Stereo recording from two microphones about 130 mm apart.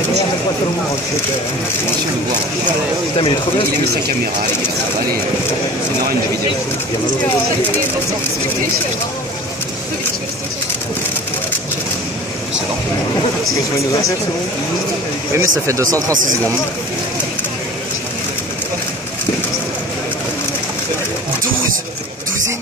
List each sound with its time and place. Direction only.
3.2 s speech: 40° left (ahead or behind)
15.3 s speech: 25° right (ahead or behind)